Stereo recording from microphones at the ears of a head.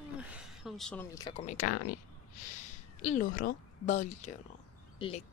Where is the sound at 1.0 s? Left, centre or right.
Left.